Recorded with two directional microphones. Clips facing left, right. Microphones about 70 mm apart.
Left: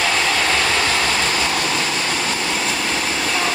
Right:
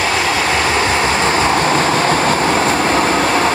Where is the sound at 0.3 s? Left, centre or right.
Right.